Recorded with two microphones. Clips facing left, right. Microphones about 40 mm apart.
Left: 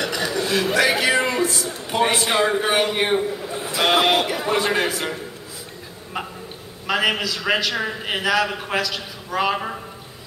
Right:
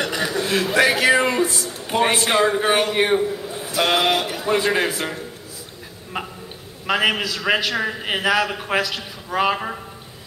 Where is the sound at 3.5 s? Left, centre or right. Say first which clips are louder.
Left 2 dB; left.